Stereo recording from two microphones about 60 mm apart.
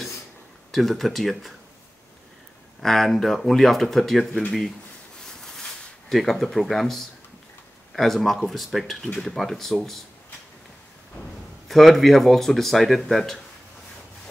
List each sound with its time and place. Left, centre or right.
0.7 s speech: centre
2.8 s speech: centre
5.4 s a sound: centre
7.9 s speech: centre
11.6 s speech: centre